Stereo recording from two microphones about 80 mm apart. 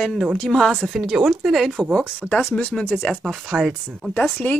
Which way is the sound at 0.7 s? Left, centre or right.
Centre.